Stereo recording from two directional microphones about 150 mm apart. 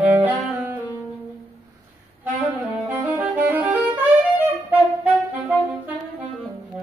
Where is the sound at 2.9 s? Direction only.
10° right (ahead or behind).